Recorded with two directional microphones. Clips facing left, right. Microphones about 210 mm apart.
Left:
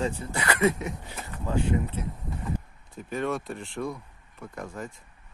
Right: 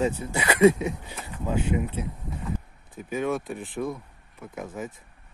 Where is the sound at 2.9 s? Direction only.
Centre (ahead or behind).